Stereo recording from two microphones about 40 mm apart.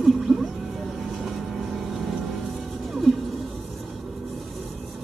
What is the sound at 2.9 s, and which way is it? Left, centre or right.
Music, centre.